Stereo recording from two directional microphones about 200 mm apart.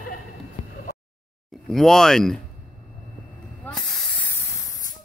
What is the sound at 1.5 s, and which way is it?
Speech, centre (ahead or behind).